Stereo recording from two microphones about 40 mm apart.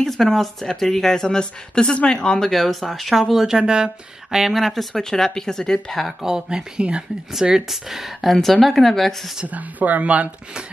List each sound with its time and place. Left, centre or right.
0.0 s speech: centre
1.2 s speech: centre
2.5 s speech: centre
3.5 s speech: centre
4.6 s speech: centre
4.9 s speech: centre
6.2 s speech: centre
6.8 s speech: right
7.5 s speech: centre
9.5 s speech: right